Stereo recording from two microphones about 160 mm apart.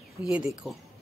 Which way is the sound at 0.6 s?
Centre (ahead or behind).